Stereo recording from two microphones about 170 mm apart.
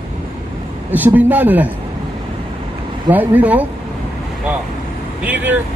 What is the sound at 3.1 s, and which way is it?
Speech, 10° right (ahead or behind).